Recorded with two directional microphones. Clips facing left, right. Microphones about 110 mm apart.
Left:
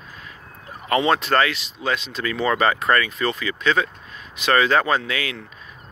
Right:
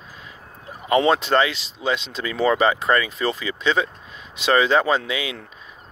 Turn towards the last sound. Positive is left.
turn(degrees=-20)  # may be behind; listen again after turning